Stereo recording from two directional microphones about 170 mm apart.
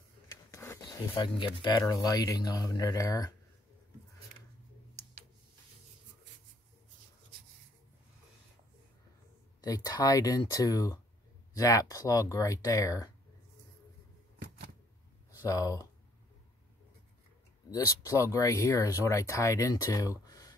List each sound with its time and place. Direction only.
0.3 s a sound: 15° left (ahead or behind)
0.8 s speech: 25° left (ahead or behind)
9.8 s speech: 20° left (ahead or behind)
15.3 s speech: 20° left (ahead or behind)
17.6 s speech: 20° left (ahead or behind)